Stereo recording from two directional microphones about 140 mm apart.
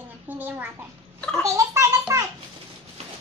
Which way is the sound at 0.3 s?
15° right (ahead or behind).